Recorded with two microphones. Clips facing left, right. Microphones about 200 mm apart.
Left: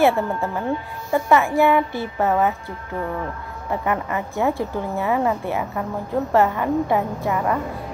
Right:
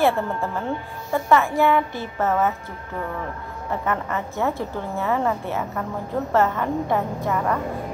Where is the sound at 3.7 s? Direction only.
15° left (ahead or behind).